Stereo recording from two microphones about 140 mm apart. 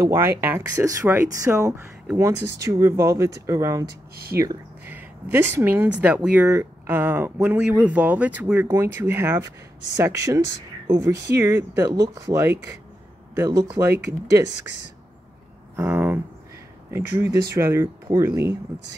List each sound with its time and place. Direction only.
0.0 s speech: 15° right (ahead or behind)
4.1 s speech: 90° right
4.4 s speech: 15° right (ahead or behind)
15.7 s speech: 15° right (ahead or behind)